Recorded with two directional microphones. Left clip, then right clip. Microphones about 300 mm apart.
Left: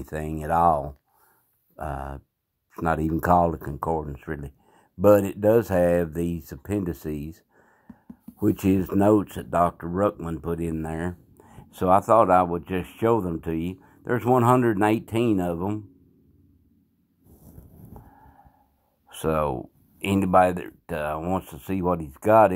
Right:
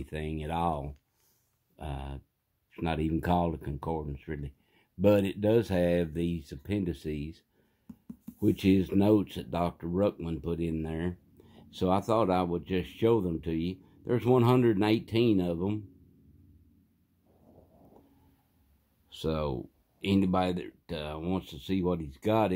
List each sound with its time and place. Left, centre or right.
0.2 s speech: centre
1.8 s speech: centre
5.1 s speech: left
5.6 s speech: centre
8.4 s speech: centre
19.0 s speech: centre